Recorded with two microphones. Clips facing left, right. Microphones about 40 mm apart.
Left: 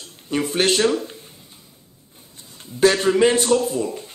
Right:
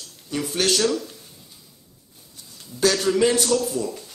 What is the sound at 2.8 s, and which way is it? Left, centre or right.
Speech, left.